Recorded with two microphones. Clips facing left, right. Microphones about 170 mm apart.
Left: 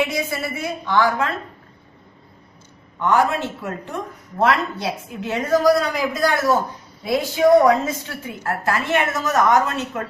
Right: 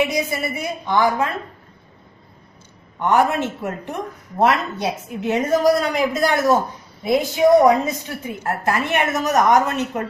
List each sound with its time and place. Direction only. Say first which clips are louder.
0.0 s a woman's voice: right 2 dB; 15° right (ahead or behind)
3.0 s a woman's voice: right 1 dB; 20° right (ahead or behind)